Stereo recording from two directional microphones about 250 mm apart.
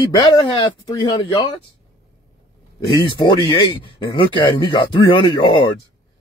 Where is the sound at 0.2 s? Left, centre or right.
Centre.